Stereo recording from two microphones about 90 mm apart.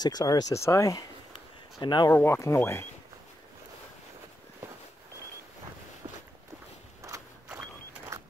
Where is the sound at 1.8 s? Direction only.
55° left (ahead or behind).